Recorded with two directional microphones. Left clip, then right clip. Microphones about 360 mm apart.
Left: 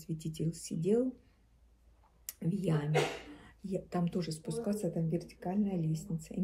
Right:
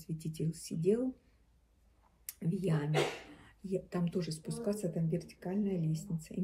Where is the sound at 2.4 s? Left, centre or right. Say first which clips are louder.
Left 1 dB; centre.